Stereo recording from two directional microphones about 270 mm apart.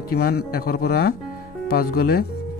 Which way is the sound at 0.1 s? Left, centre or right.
Left.